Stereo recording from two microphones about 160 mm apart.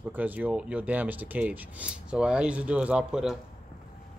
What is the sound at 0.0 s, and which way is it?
Speech, 10° right (ahead or behind).